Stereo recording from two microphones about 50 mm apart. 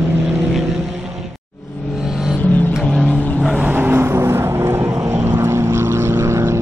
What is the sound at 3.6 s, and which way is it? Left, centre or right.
Vehicle, right.